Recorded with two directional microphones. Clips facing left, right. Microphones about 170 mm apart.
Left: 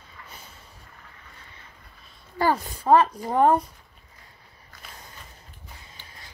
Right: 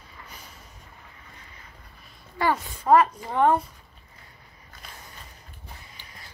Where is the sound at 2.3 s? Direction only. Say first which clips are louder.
Left 2 dB; 30° left (ahead or behind).